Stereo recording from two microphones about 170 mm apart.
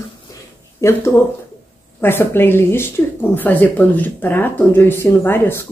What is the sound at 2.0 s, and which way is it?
Speech, 15° left (ahead or behind).